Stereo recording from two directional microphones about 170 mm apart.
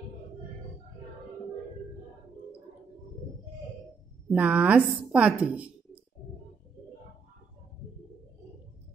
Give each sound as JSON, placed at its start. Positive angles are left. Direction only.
{"t": 4.3, "sound": "a woman's voice", "side_deg": -5}